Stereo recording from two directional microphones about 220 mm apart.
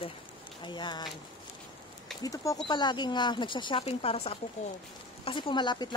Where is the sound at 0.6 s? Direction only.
20° left (ahead or behind).